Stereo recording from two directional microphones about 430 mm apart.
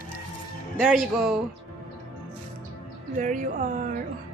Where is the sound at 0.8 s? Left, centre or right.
Centre.